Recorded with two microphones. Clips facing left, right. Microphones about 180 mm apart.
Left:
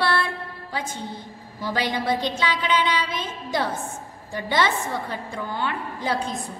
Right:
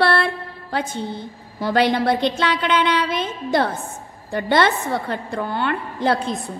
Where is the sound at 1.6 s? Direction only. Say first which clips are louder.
Right 7 dB; 65° right (ahead or behind).